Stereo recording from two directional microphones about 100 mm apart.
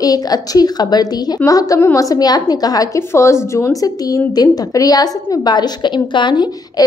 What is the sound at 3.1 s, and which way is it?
A woman's voice, 30° left (ahead or behind).